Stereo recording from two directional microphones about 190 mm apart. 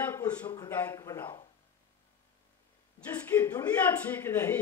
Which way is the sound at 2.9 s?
10° left (ahead or behind).